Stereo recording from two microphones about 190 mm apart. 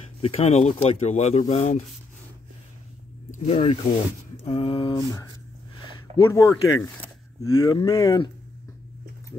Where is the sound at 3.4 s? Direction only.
30° left (ahead or behind).